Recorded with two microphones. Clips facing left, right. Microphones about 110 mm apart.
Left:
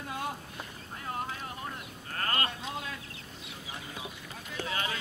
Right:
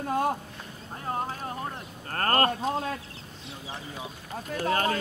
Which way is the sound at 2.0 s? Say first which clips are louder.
Right 9 dB; 50° right (ahead or behind).